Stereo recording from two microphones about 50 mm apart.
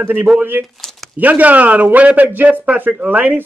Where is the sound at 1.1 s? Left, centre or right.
Right.